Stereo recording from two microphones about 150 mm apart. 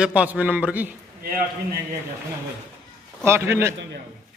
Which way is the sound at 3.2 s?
15° right (ahead or behind).